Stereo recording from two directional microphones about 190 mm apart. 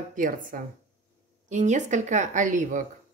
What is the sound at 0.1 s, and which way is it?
Speech, 45° right (ahead or behind).